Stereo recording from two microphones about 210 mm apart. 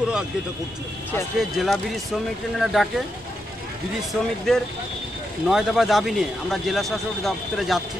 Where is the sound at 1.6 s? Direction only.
Centre (ahead or behind).